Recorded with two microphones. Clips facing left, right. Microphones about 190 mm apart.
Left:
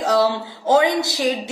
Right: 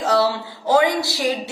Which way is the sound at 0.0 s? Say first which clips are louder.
Left 1 dB; 15° left (ahead or behind).